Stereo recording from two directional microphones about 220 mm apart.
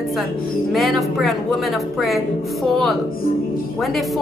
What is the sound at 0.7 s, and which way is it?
Speech, centre (ahead or behind).